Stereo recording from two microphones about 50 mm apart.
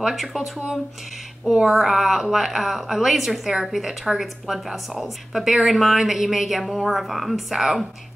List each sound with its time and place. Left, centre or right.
0.0 s a woman's voice: centre